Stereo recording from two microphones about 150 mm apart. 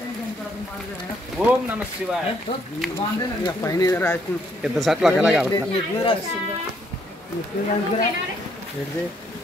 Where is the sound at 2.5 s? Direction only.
55° left (ahead or behind).